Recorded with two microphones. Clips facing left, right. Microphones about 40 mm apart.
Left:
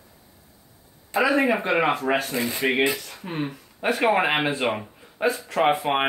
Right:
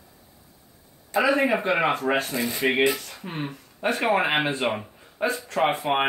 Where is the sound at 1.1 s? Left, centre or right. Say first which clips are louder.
Left 1 dB; centre.